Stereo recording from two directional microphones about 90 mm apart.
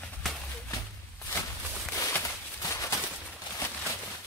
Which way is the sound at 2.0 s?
30° left (ahead or behind).